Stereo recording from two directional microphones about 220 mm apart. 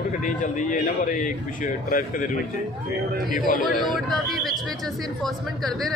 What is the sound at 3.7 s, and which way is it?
Speech, centre (ahead or behind).